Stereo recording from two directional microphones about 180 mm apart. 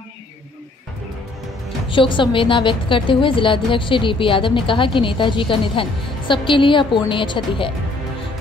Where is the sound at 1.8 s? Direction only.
25° left (ahead or behind).